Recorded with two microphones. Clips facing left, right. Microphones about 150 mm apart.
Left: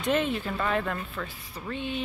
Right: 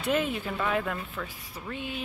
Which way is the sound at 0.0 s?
5° right (ahead or behind).